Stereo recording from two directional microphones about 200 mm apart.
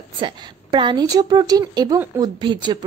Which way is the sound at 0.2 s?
25° right (ahead or behind).